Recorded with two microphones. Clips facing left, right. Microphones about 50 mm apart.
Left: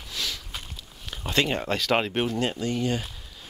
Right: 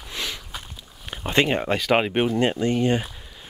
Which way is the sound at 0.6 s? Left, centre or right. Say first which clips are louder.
Right 1 dB; right.